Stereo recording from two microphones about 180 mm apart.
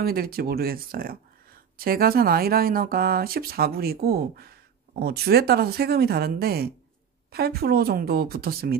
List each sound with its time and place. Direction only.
0.0 s speech: 55° right (ahead or behind)